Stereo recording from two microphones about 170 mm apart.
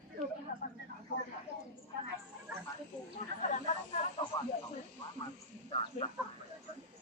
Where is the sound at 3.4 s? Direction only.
45° left (ahead or behind).